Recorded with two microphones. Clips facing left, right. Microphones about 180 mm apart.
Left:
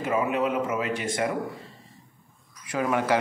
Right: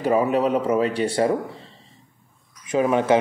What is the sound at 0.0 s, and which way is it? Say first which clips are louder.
Speech: right 6 dB; 35° right (ahead or behind).